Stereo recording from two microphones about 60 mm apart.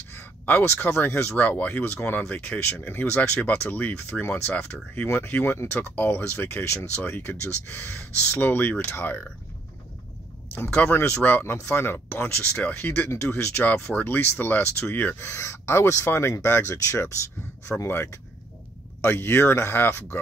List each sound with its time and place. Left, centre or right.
0.1 s a sound: left
0.7 s speech: left
1.3 s speech: left
10.9 s speech: left
13.1 s speech: left